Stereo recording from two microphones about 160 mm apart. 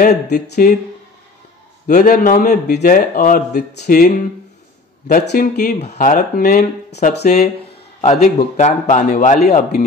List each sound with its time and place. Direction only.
0.0 s speech: 60° left (ahead or behind)
1.9 s speech: 55° left (ahead or behind)
3.5 s speech: 75° left (ahead or behind)
5.2 s speech: 90° left
5.6 s a man's voice: 45° left (ahead or behind)
5.9 s speech: 60° left (ahead or behind)
8.0 s a man's voice: 50° left (ahead or behind)